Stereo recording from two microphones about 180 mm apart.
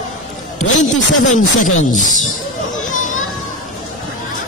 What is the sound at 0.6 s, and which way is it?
Speech, 40° left (ahead or behind).